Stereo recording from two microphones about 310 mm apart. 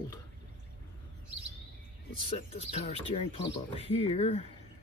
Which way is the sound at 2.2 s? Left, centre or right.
Centre.